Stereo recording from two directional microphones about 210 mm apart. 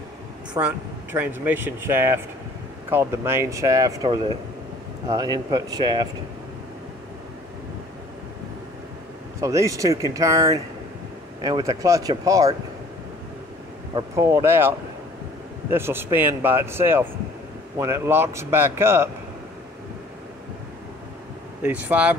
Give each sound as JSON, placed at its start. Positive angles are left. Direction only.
{"t": 0.6, "sound": "speech", "side_deg": -10}
{"t": 9.4, "sound": "speech", "side_deg": -15}
{"t": 13.9, "sound": "speech", "side_deg": -15}
{"t": 15.7, "sound": "speech", "side_deg": -10}
{"t": 21.6, "sound": "speech", "side_deg": -5}